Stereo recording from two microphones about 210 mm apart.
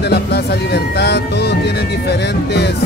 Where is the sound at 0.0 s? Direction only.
50° left (ahead or behind).